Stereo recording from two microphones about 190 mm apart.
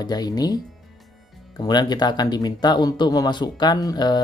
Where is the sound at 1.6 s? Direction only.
20° left (ahead or behind).